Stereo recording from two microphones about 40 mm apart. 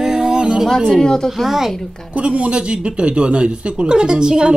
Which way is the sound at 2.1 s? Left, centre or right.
Right.